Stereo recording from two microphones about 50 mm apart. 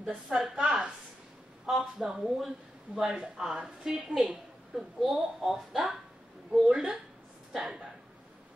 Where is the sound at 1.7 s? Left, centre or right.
Centre.